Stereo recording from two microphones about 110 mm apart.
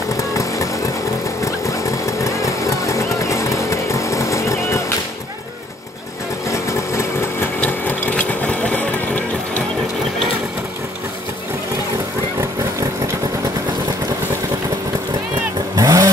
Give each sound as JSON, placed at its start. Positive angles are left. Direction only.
{"t": 1.4, "sound": "vehicle", "side_deg": 30}
{"t": 6.5, "sound": "sewing machine", "side_deg": 25}
{"t": 7.6, "sound": "sewing machine", "side_deg": 15}
{"t": 15.7, "sound": "vehicle", "side_deg": -30}